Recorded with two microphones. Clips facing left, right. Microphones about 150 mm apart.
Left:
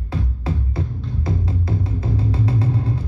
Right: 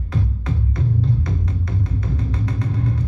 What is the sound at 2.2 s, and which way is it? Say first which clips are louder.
Vehicle: left 4 dB; 30° left (ahead or behind).